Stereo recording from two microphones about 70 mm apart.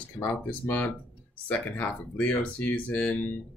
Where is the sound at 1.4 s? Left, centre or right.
Left.